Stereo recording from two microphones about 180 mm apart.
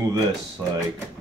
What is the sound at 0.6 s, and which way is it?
Speech, 15° right (ahead or behind).